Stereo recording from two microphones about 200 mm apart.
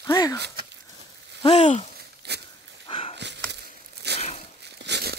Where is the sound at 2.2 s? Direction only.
55° right (ahead or behind).